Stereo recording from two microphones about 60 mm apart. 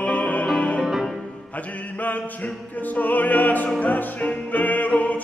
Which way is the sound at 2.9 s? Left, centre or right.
Left.